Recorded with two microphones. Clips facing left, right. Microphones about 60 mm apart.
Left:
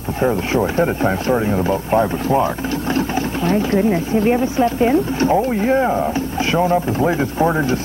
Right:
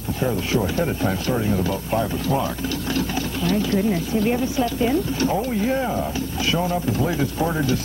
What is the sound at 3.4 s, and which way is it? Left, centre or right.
Speech, left.